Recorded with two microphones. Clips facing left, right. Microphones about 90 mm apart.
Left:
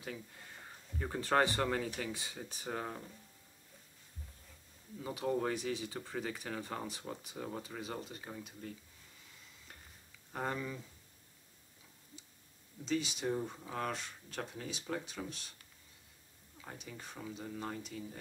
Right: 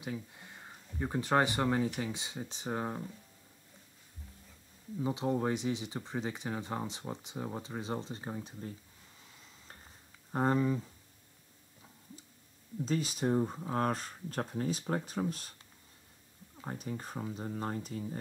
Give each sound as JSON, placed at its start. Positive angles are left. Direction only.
{"t": 0.0, "sound": "speech", "side_deg": -20}
{"t": 5.0, "sound": "speech", "side_deg": -20}
{"t": 10.3, "sound": "speech", "side_deg": -35}
{"t": 12.8, "sound": "speech", "side_deg": -40}
{"t": 16.5, "sound": "speech", "side_deg": -40}